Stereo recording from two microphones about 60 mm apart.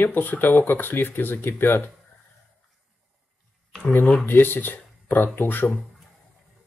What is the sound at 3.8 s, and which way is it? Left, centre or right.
Speech, left.